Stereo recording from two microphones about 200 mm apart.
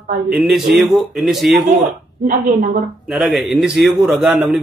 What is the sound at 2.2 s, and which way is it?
Speech, 40° right (ahead or behind).